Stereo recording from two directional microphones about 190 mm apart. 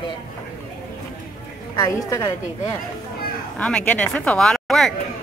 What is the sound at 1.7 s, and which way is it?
A woman's voice, 20° left (ahead or behind).